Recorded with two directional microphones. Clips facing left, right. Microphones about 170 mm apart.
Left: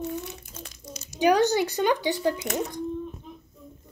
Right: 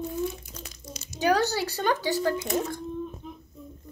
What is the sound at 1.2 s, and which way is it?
Speech, 15° left (ahead or behind).